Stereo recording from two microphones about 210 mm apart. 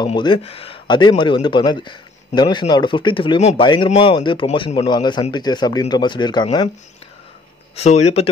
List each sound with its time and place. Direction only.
0.0 s a man's voice: 20° left (ahead or behind)
7.7 s speech: 30° left (ahead or behind)